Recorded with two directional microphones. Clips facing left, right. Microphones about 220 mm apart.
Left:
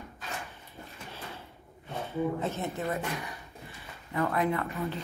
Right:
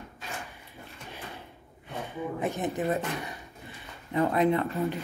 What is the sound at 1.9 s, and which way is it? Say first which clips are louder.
Speech: left 3 dB; 15° right (ahead or behind).